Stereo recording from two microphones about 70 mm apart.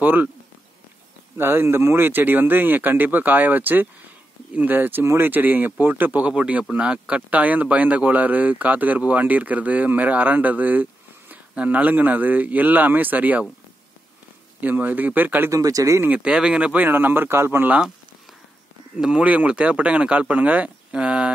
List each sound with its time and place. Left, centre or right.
0.0 s speech: right
1.4 s speech: right
14.6 s speech: right
15.5 s speech: right
16.0 s speech: right
16.3 s speech: centre; by 17.6 s right
18.9 s speech: centre